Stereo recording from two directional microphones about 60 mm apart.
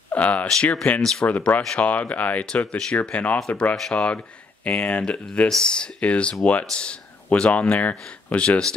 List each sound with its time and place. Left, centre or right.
0.1 s speech: left
3.3 s speech: centre
3.9 s speech: centre